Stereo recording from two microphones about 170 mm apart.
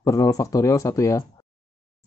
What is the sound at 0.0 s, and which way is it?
Speech, 20° left (ahead or behind).